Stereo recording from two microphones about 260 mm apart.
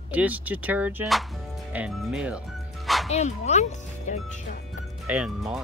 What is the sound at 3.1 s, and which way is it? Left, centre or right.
Speech, left.